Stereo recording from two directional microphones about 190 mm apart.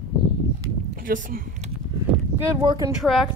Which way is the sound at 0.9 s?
45° right (ahead or behind).